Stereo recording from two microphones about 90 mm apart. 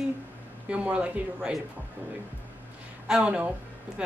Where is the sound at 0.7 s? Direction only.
15° right (ahead or behind).